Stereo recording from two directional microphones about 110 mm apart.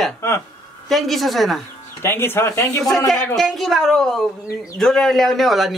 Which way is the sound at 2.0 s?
20° left (ahead or behind).